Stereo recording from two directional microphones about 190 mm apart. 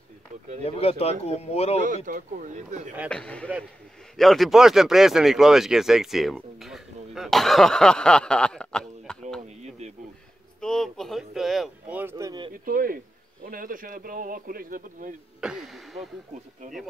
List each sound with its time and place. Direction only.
0.7 s speech: 30° left (ahead or behind)
2.0 s speech: 45° right (ahead or behind)
3.1 s speech: 5° left (ahead or behind)
9.6 s a sound: 35° right (ahead or behind)
10.6 s speech: centre (ahead or behind)
12.0 s speech: 15° right (ahead or behind)
12.6 s speech: 50° right (ahead or behind)
15.4 s speech: centre (ahead or behind)